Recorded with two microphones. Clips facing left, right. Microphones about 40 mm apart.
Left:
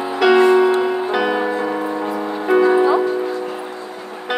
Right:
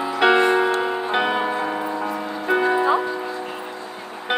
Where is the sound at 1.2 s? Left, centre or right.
Centre.